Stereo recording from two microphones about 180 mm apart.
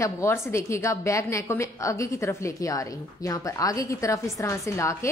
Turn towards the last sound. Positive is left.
turn(degrees=15)  # may be behind; listen again after turning